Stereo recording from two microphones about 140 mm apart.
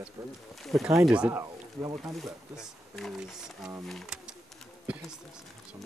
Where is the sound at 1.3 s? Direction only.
20° right (ahead or behind).